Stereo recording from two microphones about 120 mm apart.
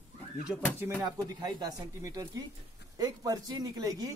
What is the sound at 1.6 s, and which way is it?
Speech, 30° right (ahead or behind).